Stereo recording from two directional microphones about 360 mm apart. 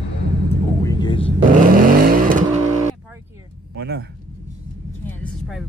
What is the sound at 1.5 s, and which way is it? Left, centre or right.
Vehicle, right.